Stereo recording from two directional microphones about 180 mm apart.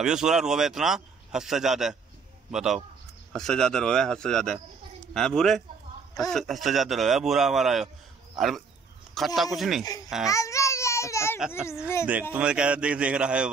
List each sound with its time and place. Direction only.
0.0 s speech: 5° right (ahead or behind)
10.2 s babbling: 20° left (ahead or behind)
12.1 s a man's voice: 10° right (ahead or behind)